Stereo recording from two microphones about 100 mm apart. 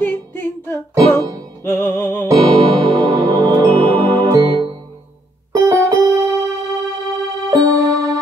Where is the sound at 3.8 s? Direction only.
65° right (ahead or behind).